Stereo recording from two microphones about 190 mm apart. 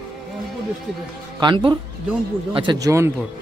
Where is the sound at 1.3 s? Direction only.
25° right (ahead or behind).